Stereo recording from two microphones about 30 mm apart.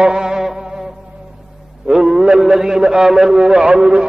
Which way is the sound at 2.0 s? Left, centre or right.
Right.